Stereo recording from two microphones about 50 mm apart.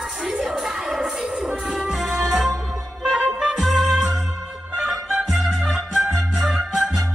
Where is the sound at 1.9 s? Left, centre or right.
Centre.